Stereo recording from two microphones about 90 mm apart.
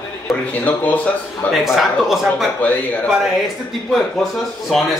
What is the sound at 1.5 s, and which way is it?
Speech, 5° right (ahead or behind).